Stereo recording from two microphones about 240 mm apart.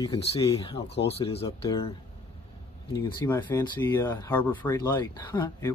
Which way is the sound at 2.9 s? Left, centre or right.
Centre.